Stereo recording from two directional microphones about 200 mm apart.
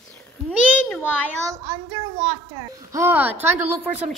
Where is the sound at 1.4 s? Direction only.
15° right (ahead or behind).